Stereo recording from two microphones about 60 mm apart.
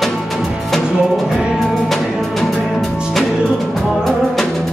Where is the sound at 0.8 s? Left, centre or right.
Centre.